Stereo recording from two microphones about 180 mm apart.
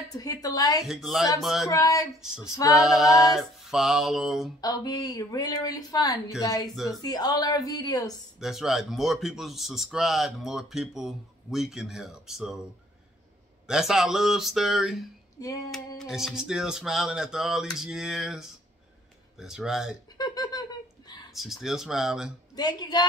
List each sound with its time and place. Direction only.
0.2 s speech: 20° left (ahead or behind)
0.8 s speech: centre (ahead or behind)
1.7 s speech: 20° left (ahead or behind)
2.5 s female singing: 20° left (ahead or behind)
2.8 s speech: centre (ahead or behind)
4.6 s speech: 20° left (ahead or behind)
8.4 s speech: centre (ahead or behind)
13.7 s speech: centre (ahead or behind)
15.4 s speech: 20° left (ahead or behind)
16.0 s speech: centre (ahead or behind)
20.2 s a sound: 20° left (ahead or behind)
21.3 s speech: centre (ahead or behind)
22.6 s speech: 25° left (ahead or behind)